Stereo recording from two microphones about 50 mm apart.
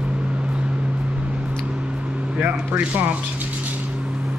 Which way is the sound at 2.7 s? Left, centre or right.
Centre.